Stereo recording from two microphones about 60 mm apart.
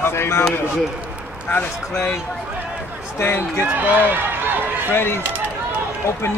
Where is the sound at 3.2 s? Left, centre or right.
Left.